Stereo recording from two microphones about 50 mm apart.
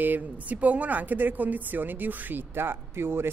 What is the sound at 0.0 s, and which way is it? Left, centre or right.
A woman's voice, right.